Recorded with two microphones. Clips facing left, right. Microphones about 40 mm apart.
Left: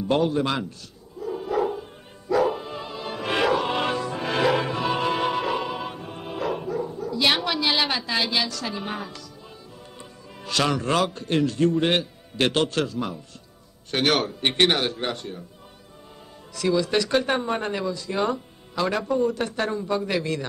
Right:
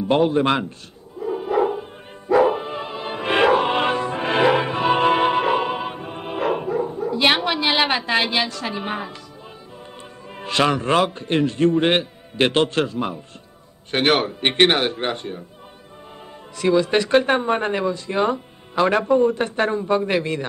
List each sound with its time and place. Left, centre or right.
0.1 s a man's voice: right
1.2 s music: right
10.4 s a man's voice: right
16.5 s a man's voice: right
18.2 s music: right
18.9 s a man's voice: right